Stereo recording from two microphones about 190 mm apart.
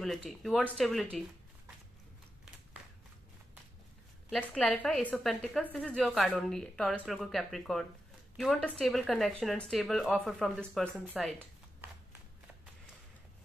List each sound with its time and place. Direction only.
0.0 s a woman's voice: centre (ahead or behind)
4.3 s a woman's voice: 5° left (ahead or behind)